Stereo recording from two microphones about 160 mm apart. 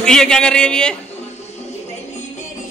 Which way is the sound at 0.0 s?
5° left (ahead or behind).